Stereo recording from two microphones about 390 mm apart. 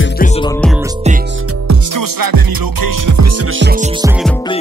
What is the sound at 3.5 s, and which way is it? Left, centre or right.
Music, right.